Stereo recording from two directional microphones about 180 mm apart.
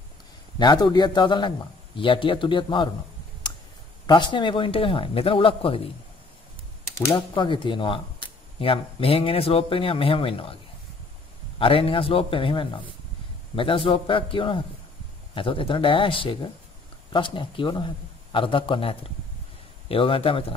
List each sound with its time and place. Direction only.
0.6 s a man's voice: 25° left (ahead or behind)
4.0 s speech: 25° left (ahead or behind)
7.2 s a man's voice: 25° left (ahead or behind)